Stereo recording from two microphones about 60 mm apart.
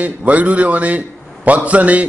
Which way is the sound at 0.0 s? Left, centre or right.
Right.